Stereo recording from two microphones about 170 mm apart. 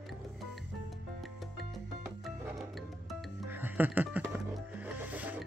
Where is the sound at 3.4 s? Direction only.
10° right (ahead or behind).